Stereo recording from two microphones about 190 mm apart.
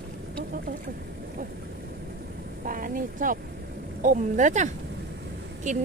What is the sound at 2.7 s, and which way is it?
Speech, 45° right (ahead or behind).